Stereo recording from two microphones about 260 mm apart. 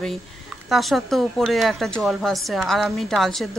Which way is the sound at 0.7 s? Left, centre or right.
Centre.